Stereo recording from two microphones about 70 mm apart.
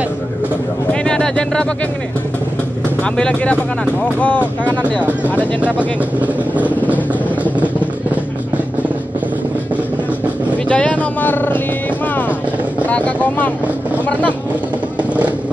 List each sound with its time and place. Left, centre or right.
1.0 s a sound: centre
3.0 s speech: centre
5.6 s speech: right
10.7 s speech: centre
12.9 s speech: left